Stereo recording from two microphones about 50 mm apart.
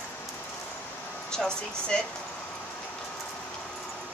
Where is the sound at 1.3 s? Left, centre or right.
Centre.